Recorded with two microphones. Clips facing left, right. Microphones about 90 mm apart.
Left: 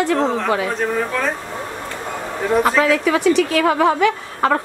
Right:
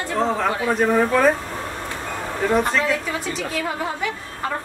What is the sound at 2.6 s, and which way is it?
A man's voice, 90° left.